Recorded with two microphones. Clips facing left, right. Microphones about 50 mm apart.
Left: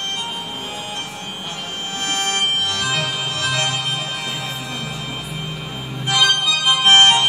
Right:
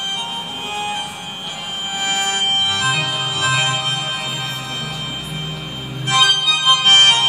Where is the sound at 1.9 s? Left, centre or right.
Centre.